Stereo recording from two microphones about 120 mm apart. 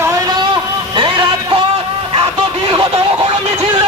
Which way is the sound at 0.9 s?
40° right (ahead or behind).